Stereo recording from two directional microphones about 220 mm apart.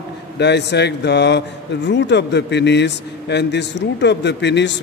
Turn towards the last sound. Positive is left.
turn(degrees=50)  # may be behind; listen again after turning